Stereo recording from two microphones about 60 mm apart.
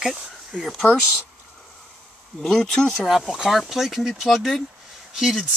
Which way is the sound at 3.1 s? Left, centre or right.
Centre.